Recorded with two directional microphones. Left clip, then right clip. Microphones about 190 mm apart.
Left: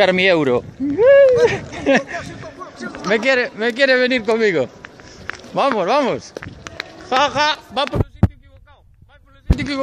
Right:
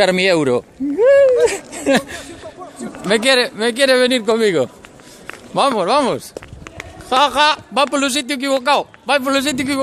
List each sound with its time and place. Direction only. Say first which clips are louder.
0.0 s speech: even; 15° right (ahead or behind)
3.1 s a man's voice: right 2 dB; 30° right (ahead or behind)
5.5 s speech: right 2 dB; 15° right (ahead or behind)
7.4 s a man's voice: right 4 dB; 45° right (ahead or behind)